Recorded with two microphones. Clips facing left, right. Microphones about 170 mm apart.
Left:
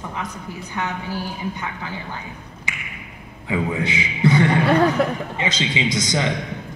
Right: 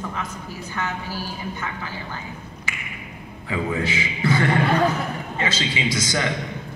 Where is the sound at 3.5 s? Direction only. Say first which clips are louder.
Left 2 dB; 20° left (ahead or behind).